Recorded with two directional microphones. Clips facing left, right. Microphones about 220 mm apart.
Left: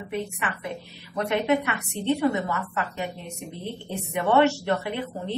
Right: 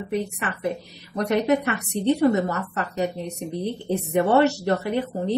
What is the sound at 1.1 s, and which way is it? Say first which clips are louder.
A woman's voice: right 3 dB; 40° right (ahead or behind).